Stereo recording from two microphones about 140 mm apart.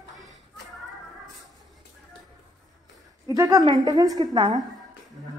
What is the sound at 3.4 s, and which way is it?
Speech, 25° right (ahead or behind).